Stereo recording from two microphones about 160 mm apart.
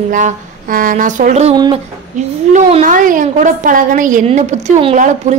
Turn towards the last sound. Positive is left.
turn(degrees=-50)  # may be behind; listen again after turning